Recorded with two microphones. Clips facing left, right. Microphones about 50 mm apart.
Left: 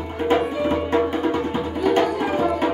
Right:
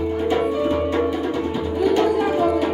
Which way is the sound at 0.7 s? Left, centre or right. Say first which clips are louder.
Even; left.